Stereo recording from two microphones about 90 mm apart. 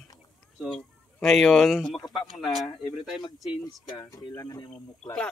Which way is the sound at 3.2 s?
50° left (ahead or behind).